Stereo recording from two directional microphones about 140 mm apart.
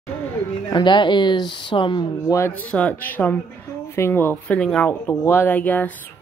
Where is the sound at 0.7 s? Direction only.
35° left (ahead or behind).